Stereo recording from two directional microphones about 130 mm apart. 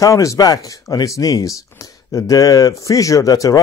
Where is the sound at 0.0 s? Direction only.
25° left (ahead or behind).